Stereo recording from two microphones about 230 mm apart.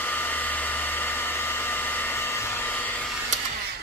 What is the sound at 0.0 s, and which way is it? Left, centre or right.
Hair dryer, centre.